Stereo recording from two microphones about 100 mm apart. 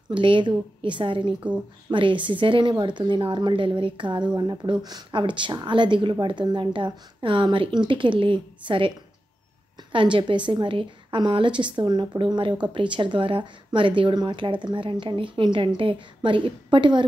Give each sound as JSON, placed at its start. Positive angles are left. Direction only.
{"t": 0.1, "sound": "speech", "side_deg": -55}
{"t": 9.9, "sound": "speech", "side_deg": -55}